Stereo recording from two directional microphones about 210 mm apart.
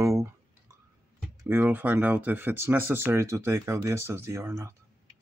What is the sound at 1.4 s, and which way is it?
Speech, 10° right (ahead or behind).